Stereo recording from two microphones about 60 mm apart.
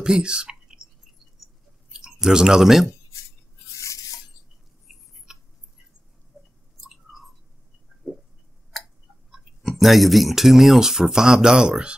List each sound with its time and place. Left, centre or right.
0.0 s speech: centre
2.0 s speech: centre
3.7 s a sound: left
6.8 s chewing: centre
7.9 s pig: centre
9.3 s speech: centre